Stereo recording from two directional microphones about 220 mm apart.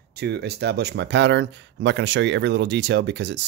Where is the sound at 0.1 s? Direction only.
50° right (ahead or behind).